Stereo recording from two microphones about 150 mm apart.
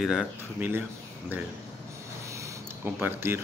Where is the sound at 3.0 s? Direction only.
15° right (ahead or behind).